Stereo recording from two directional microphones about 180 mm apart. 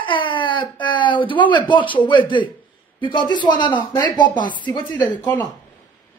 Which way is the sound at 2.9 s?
25° left (ahead or behind).